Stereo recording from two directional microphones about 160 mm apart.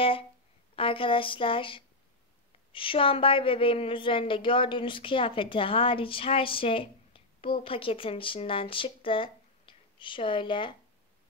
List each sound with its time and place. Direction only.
0.7 s a woman's voice: 35° left (ahead or behind)